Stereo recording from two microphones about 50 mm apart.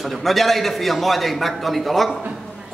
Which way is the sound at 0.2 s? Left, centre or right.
Centre.